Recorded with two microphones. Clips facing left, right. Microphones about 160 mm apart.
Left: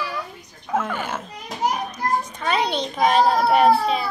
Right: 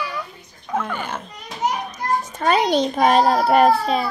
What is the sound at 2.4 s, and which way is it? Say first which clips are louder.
A child's voice: right 5 dB; 45° right (ahead or behind).